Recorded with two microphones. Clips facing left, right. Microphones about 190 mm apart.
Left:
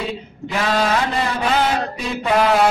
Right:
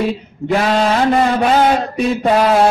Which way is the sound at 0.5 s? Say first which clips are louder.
Right 5 dB; 50° right (ahead or behind).